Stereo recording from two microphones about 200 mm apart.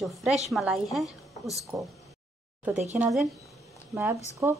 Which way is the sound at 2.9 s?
5° right (ahead or behind).